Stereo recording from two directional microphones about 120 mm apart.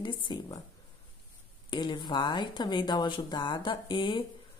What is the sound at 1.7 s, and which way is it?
A woman's voice, 40° left (ahead or behind).